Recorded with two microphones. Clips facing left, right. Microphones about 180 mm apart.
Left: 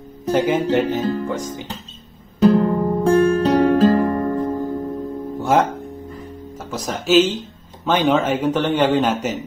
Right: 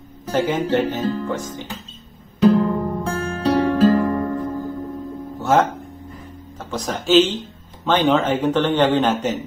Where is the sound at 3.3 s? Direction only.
45° left (ahead or behind).